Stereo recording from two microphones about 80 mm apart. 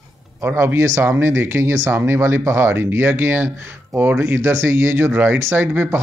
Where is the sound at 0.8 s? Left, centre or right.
Right.